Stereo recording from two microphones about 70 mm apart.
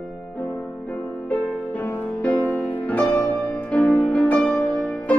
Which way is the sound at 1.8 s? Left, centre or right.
Left.